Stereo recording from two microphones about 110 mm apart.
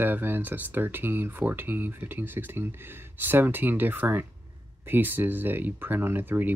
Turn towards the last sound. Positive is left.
turn(degrees=-20)  # may be behind; listen again after turning